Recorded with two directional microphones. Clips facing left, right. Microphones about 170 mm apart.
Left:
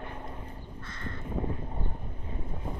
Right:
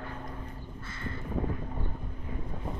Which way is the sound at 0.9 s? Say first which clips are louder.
Right 1 dB; 5° right (ahead or behind).